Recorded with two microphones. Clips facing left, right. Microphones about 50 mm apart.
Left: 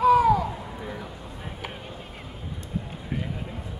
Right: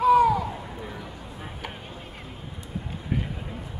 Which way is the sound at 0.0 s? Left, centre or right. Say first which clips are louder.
Even; centre.